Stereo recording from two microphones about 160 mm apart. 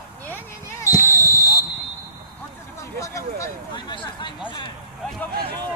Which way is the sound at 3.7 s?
30° left (ahead or behind).